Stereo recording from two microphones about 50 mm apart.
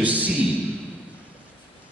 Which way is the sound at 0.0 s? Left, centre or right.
Right.